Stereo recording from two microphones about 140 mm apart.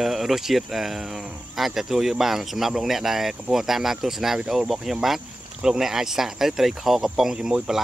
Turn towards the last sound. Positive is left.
turn(degrees=-5)  # may be behind; listen again after turning